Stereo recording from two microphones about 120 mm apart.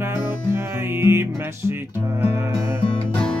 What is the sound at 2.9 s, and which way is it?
Music, 10° left (ahead or behind).